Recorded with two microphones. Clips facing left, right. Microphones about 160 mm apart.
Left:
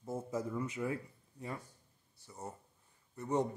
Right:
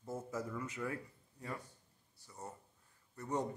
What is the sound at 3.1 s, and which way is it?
Speech, 20° left (ahead or behind).